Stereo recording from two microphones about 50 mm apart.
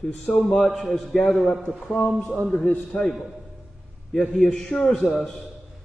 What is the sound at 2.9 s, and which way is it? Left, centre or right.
Speech, left.